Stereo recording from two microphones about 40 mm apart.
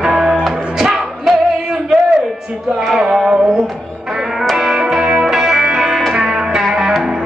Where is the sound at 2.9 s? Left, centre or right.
Centre.